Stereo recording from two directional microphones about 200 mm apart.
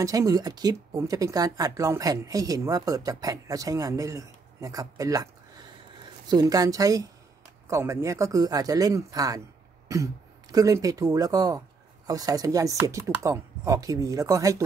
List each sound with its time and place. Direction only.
0.0 s speech: 15° right (ahead or behind)